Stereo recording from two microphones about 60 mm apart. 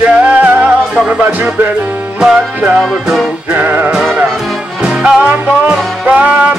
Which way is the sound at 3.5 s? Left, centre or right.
Right.